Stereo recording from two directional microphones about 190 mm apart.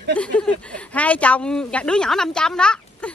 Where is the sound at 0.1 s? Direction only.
5° left (ahead or behind).